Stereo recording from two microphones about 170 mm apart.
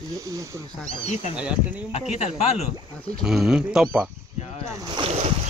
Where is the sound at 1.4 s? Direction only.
5° right (ahead or behind).